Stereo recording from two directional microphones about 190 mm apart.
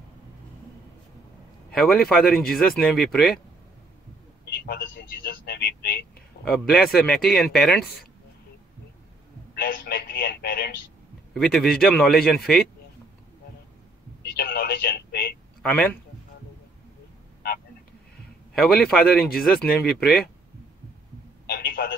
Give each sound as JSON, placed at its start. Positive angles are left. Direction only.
{"t": 2.0, "sound": "speech", "side_deg": 0}
{"t": 4.6, "sound": "speech", "side_deg": 55}
{"t": 6.4, "sound": "speech", "side_deg": 0}
{"t": 9.6, "sound": "a sound", "side_deg": 55}
{"t": 11.3, "sound": "speech", "side_deg": 5}
{"t": 14.3, "sound": "a sound", "side_deg": 55}
{"t": 15.6, "sound": "a man's voice", "side_deg": 5}
{"t": 18.5, "sound": "speech", "side_deg": 0}
{"t": 21.5, "sound": "a sound", "side_deg": 50}